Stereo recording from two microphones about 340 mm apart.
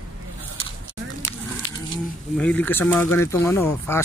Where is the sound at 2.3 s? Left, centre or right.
Centre.